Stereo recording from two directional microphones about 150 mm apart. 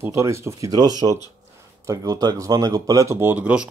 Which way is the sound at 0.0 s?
20° right (ahead or behind).